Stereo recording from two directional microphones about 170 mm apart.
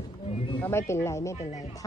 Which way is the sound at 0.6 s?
15° left (ahead or behind).